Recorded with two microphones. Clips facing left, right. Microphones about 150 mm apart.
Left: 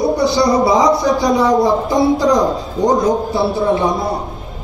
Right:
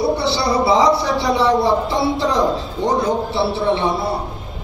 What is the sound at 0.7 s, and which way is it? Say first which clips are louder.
Speech: left 2 dB; 30° right (ahead or behind).